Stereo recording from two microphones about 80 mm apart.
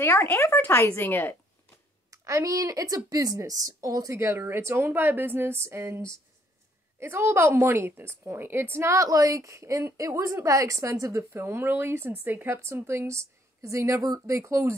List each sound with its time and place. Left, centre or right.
0.0 s speech: left
2.0 s a woman's voice: right